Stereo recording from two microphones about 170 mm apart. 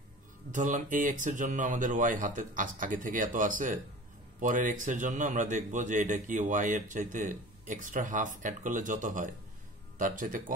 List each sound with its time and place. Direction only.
0.5 s a man's voice: 45° right (ahead or behind)